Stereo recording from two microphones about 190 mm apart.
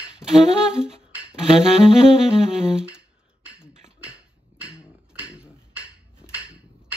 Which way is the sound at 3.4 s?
5° right (ahead or behind).